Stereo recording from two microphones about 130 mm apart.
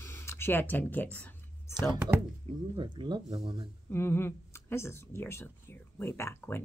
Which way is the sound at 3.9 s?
20° left (ahead or behind).